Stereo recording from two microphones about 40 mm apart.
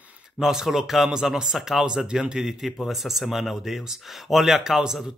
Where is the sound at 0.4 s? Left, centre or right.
Centre.